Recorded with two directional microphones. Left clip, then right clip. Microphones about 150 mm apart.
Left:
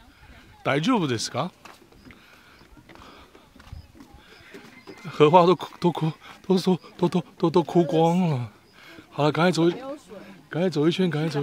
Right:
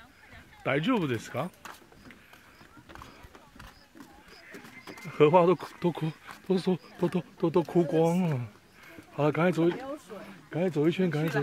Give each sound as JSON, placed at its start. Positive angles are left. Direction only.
{"t": 0.7, "sound": "speech", "side_deg": 35}
{"t": 5.0, "sound": "speech", "side_deg": 30}
{"t": 7.0, "sound": "speech", "side_deg": 35}